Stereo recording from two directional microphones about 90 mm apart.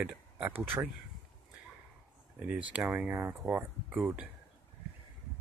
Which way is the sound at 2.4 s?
15° right (ahead or behind).